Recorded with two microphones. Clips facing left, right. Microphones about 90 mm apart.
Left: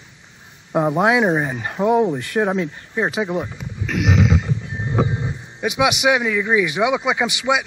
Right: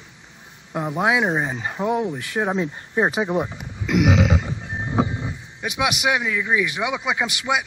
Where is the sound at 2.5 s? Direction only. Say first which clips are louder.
Even; 15° right (ahead or behind).